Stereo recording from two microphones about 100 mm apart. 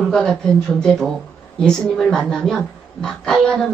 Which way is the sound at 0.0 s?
5° left (ahead or behind).